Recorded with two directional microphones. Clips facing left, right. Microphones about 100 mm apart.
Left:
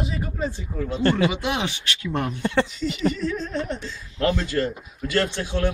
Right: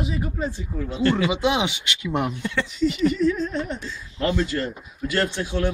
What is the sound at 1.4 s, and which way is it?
Speech, 15° right (ahead or behind).